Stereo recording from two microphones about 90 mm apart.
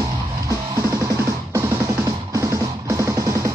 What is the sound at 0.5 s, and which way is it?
Music, 40° right (ahead or behind).